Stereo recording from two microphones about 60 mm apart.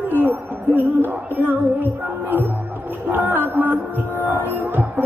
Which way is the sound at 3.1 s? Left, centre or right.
Right.